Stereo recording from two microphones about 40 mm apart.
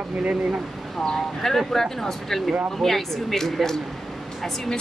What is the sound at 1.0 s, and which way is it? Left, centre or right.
Speech, centre.